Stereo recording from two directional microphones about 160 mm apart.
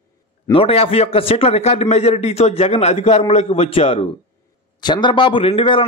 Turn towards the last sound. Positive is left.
turn(degrees=35)  # may be behind; listen again after turning